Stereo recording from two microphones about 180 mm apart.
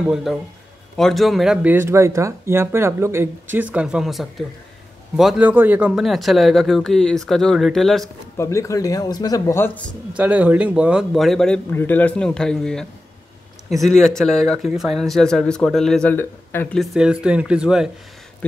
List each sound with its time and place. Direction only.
0.1 s speech: centre (ahead or behind)
8.4 s speech: 15° left (ahead or behind)
10.1 s speech: 5° right (ahead or behind)